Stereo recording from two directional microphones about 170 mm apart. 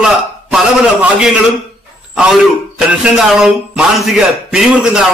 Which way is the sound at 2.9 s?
5° right (ahead or behind).